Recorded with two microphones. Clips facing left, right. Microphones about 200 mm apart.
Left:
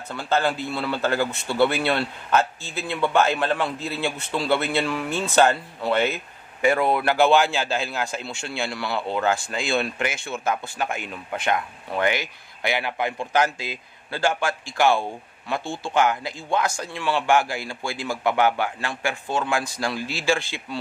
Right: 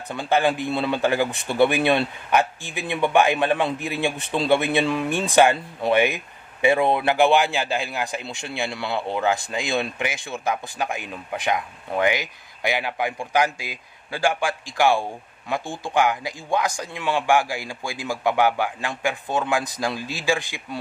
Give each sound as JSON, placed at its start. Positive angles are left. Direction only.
{"t": 0.1, "sound": "speech", "side_deg": -15}